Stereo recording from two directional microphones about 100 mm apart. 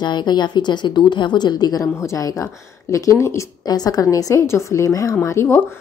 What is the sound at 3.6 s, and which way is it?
A woman's voice, 40° left (ahead or behind).